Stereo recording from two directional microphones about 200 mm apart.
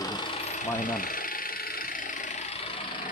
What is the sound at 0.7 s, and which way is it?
Engine, 40° left (ahead or behind).